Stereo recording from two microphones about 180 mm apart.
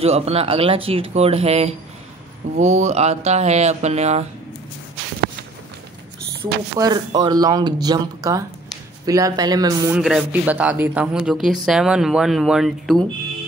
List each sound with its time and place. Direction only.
0.0 s speech: 35° right (ahead or behind)
6.4 s speech: 25° right (ahead or behind)
9.9 s speech: 5° right (ahead or behind)